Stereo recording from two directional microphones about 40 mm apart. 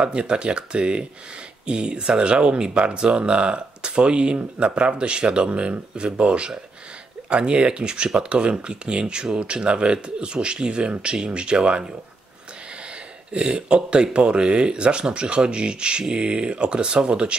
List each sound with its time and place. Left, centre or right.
0.0 s speech: right
13.3 s speech: right